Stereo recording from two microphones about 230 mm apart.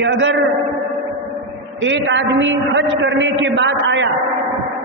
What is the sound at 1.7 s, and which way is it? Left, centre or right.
A man's voice, right.